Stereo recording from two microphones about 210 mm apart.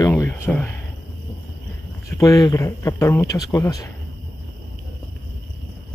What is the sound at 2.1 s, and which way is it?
A man's voice, 15° left (ahead or behind).